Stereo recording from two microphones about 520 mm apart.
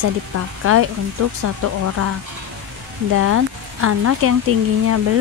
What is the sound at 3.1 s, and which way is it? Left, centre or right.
Speech, right.